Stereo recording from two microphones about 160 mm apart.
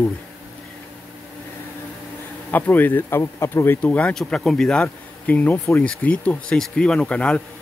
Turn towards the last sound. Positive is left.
turn(degrees=5)  # may be behind; listen again after turning